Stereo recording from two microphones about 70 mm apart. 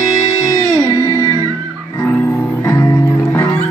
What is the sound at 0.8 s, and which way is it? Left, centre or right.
Music, right.